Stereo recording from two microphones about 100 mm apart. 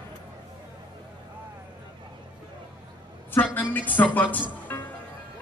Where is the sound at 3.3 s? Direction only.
20° left (ahead or behind).